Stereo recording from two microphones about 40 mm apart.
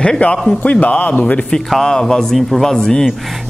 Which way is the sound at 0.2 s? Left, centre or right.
Left.